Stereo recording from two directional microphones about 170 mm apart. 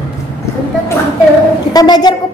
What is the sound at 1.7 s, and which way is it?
Speech, 25° left (ahead or behind).